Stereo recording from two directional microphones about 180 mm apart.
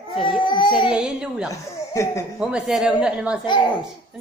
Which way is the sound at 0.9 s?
5° right (ahead or behind).